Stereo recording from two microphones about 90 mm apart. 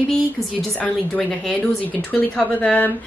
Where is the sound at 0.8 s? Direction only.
10° left (ahead or behind).